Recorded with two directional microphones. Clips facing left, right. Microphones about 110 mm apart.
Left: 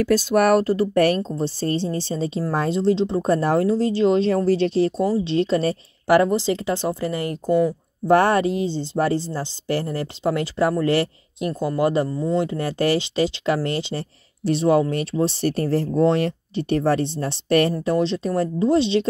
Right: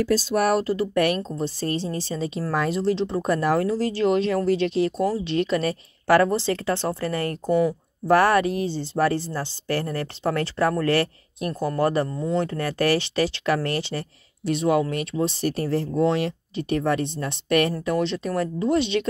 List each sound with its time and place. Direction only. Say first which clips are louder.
0.0 s speech: left 4 dB; 60° left (ahead or behind); by 5.0 s 35° left (ahead or behind)
5.0 s speech: left 3 dB; 20° left (ahead or behind)
6.0 s speech: left 2 dB; 15° left (ahead or behind)
14.4 s speech: left 3 dB; 30° left (ahead or behind)